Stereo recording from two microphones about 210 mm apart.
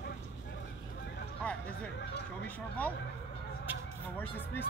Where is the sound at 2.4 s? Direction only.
5° left (ahead or behind).